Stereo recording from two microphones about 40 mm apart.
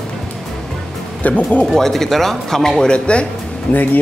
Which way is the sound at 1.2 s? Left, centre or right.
Left.